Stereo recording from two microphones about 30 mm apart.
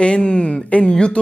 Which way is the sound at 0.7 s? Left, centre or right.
Left.